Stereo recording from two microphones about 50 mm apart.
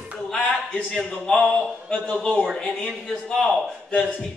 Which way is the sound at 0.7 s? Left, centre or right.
Centre.